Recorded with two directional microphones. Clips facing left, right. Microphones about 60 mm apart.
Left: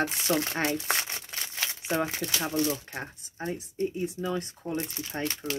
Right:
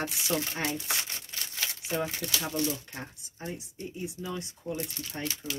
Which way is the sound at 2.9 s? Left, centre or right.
Left.